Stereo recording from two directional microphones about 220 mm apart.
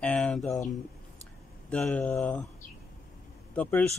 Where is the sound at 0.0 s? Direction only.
5° left (ahead or behind).